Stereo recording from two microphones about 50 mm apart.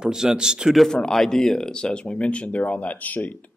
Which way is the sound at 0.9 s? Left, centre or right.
Centre.